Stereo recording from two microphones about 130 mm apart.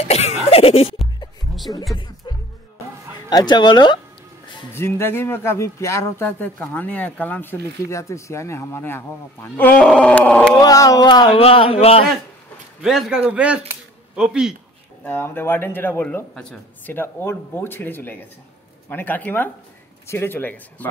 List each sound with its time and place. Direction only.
0.0 s cough: 55° left (ahead or behind)
1.5 s music: centre (ahead or behind)
2.0 s music: 35° left (ahead or behind)
3.3 s speech: 30° left (ahead or behind)
4.7 s speech: 20° left (ahead or behind)
10.6 s a man's voice: 25° left (ahead or behind); by 12.0 s 45° left (ahead or behind)
12.8 s speech: 5° right (ahead or behind)
15.0 s speech: 15° left (ahead or behind)